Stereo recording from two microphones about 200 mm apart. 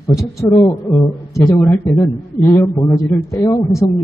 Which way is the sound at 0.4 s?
15° left (ahead or behind).